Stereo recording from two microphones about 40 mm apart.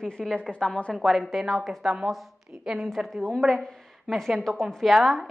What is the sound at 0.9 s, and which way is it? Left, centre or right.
Speech, centre.